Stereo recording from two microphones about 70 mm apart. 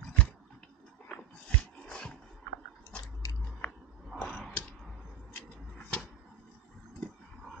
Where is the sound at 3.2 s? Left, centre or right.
Left.